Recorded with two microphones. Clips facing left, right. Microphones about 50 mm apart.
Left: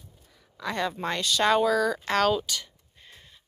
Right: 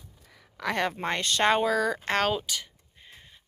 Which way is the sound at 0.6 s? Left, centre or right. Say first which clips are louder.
Right 1 dB; right.